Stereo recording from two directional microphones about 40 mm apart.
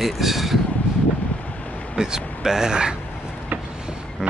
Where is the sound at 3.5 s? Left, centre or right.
Right.